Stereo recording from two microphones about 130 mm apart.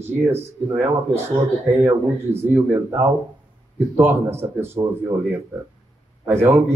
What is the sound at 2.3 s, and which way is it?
Speech, 20° right (ahead or behind).